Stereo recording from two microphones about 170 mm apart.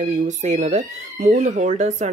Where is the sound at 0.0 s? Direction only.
45° right (ahead or behind).